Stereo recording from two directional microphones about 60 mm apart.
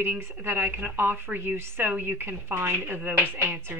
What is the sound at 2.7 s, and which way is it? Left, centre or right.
Chopping, right.